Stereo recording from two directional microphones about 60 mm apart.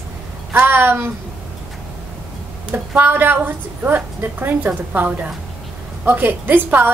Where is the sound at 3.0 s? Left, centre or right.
Right.